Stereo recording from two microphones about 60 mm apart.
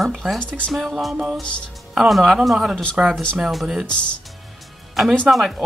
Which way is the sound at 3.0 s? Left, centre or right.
Right.